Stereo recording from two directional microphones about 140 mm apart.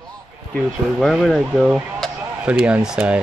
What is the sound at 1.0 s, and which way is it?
Speech, centre (ahead or behind).